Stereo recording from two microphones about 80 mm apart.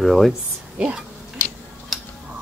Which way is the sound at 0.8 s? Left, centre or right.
Centre.